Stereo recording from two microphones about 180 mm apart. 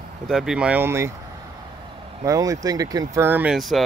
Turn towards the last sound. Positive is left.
turn(degrees=0)  # may be behind; listen again after turning